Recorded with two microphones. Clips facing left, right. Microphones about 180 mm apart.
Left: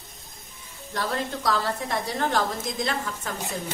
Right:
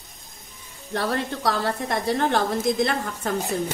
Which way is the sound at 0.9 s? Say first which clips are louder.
Right 3 dB; 60° right (ahead or behind).